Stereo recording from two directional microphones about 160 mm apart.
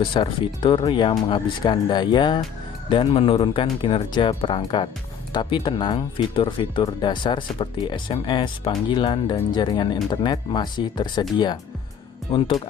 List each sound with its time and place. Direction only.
0.0 s speech: 30° left (ahead or behind)